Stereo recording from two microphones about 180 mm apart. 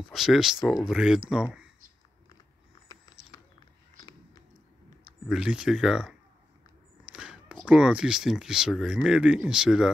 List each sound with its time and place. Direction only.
0.1 s speech: centre (ahead or behind)
2.9 s a sound: 20° left (ahead or behind)
5.3 s speech: 5° right (ahead or behind)